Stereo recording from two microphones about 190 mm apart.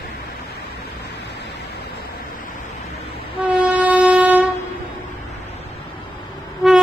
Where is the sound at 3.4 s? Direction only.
10° right (ahead or behind).